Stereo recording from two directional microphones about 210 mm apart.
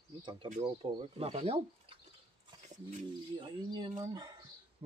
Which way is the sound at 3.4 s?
25° right (ahead or behind).